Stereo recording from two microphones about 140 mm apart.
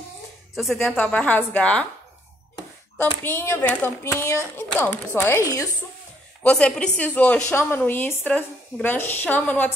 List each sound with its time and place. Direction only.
0.9 s speech: 10° left (ahead or behind)
3.3 s speech: 15° left (ahead or behind)
6.4 s speech: 10° left (ahead or behind)